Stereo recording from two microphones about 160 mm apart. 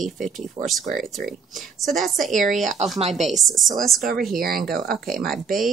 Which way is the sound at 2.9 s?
40° right (ahead or behind).